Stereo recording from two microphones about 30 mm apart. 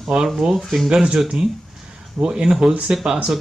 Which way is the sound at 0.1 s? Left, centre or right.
Right.